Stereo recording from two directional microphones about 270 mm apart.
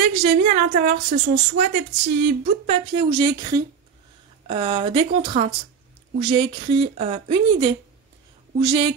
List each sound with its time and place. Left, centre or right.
0.0 s speech: right